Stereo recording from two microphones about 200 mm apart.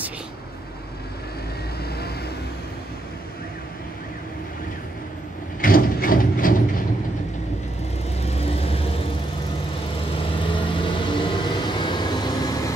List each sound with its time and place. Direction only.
5.6 s mechanisms: 45° left (ahead or behind)
8.2 s vehicle: 30° left (ahead or behind)
10.4 s vehicle: 25° left (ahead or behind)